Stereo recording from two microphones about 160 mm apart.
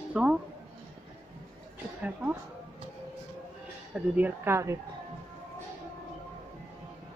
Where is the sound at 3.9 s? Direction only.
10° right (ahead or behind).